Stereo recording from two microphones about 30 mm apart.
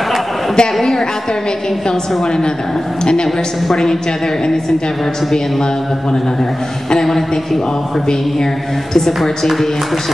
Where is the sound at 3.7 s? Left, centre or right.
Centre.